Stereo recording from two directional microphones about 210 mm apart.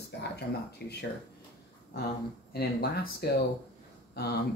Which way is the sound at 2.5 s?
50° left (ahead or behind).